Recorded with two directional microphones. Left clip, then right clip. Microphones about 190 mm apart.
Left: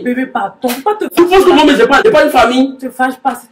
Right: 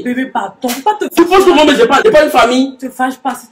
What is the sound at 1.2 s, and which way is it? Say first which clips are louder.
Speech: left 1 dB; 15° right (ahead or behind).